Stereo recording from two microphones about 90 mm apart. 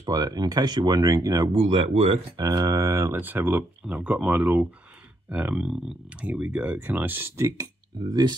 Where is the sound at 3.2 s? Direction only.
20° right (ahead or behind).